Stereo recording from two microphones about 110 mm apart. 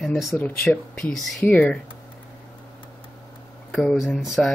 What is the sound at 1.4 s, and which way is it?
Speech, 15° left (ahead or behind).